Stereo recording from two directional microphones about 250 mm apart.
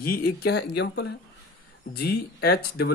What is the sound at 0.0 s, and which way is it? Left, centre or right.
Speech, left.